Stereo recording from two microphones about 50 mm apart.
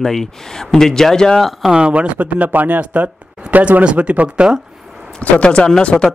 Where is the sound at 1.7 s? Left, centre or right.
Centre.